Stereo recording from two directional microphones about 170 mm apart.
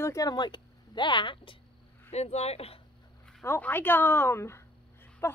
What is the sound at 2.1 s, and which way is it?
Speech, 40° left (ahead or behind).